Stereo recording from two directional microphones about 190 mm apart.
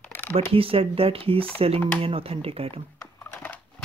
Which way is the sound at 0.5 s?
30° right (ahead or behind).